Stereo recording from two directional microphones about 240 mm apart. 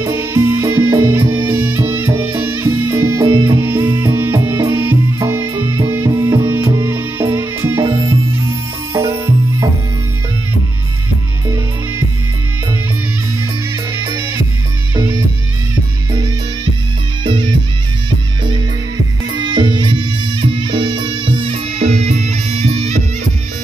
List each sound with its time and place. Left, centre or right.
0.0 s music: centre
13.9 s music: centre
19.3 s music: centre